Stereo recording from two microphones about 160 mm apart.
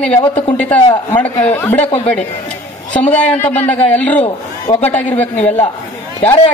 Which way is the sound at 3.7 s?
10° left (ahead or behind).